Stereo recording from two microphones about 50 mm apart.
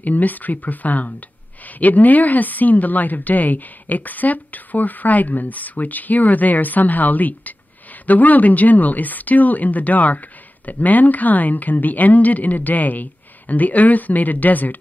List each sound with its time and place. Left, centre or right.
0.0 s speech: left